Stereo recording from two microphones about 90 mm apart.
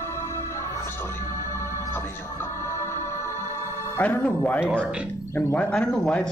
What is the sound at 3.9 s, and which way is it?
Speech, 30° left (ahead or behind).